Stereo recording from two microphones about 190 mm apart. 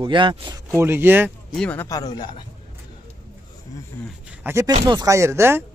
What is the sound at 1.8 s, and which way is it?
Speech, 20° left (ahead or behind).